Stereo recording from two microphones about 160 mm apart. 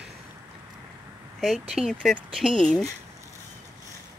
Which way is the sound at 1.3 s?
Centre (ahead or behind).